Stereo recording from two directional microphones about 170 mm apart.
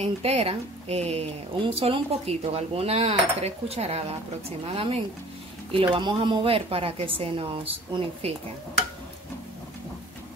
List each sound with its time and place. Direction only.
0.0 s speech: 35° right (ahead or behind)